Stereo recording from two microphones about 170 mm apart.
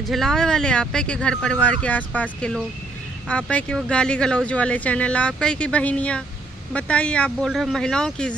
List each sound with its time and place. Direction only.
0.0 s speech: centre (ahead or behind)